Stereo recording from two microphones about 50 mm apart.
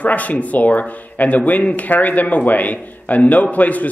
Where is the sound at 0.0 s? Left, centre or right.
Left.